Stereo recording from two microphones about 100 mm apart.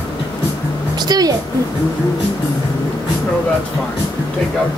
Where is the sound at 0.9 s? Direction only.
40° right (ahead or behind).